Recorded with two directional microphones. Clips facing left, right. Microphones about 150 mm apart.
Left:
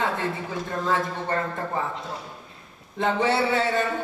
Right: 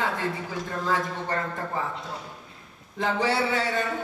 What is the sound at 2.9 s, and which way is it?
Speech, 25° left (ahead or behind).